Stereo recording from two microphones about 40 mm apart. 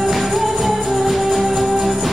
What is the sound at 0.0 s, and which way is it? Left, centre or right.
Music, centre.